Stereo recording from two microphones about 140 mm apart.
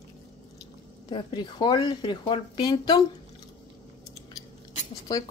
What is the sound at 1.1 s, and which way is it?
Speech, 30° left (ahead or behind).